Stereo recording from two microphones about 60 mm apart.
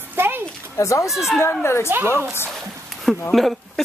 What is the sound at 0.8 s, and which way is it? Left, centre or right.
Speech, left.